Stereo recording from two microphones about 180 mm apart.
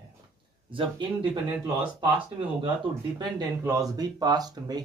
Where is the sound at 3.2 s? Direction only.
20° right (ahead or behind).